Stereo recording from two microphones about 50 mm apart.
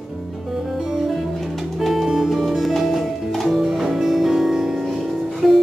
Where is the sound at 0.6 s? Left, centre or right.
Centre.